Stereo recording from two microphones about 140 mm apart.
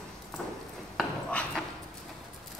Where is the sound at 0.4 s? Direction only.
10° left (ahead or behind).